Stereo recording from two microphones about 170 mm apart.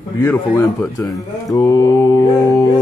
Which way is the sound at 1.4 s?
20° left (ahead or behind).